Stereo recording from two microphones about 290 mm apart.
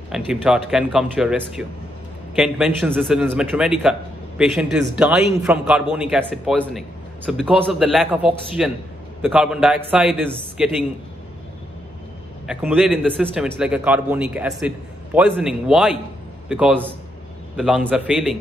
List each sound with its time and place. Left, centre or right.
0.1 s a man's voice: centre
12.4 s a man's voice: centre